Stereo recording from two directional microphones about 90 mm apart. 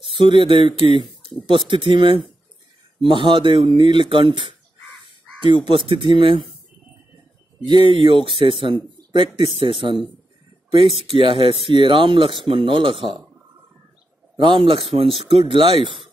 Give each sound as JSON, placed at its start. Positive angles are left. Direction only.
{"t": 0.1, "sound": "speech", "side_deg": -70}
{"t": 5.7, "sound": "speech", "side_deg": -70}
{"t": 7.6, "sound": "speech", "side_deg": -65}
{"t": 9.5, "sound": "speech", "side_deg": -85}
{"t": 14.3, "sound": "speech", "side_deg": -65}